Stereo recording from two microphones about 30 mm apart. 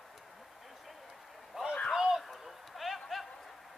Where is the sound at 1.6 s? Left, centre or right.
Right.